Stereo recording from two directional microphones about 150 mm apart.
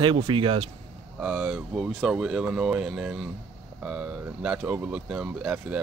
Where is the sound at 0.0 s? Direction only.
35° right (ahead or behind).